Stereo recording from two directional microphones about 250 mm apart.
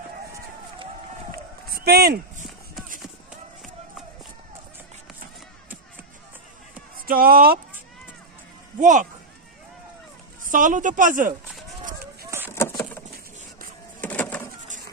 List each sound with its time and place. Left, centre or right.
1.7 s a sound: right
7.1 s a woman's voice: right
8.7 s speech: right
10.4 s a woman's voice: right
11.8 s run: right
12.3 s vehicle: centre
12.5 s vehicle: centre
14.0 s power windows: centre